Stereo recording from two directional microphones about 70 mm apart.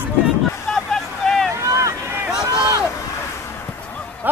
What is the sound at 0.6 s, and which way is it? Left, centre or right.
Vehicle, centre.